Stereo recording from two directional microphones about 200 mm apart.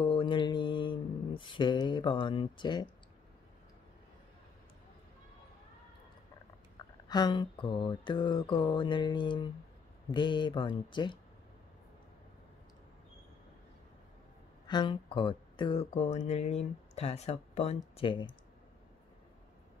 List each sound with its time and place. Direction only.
0.0 s mantra: 25° left (ahead or behind)
1.4 s speech: 25° left (ahead or behind)
7.1 s speech: 20° left (ahead or behind)
14.7 s speech: 25° left (ahead or behind)